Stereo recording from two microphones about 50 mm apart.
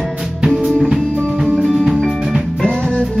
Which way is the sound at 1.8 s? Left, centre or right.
Centre.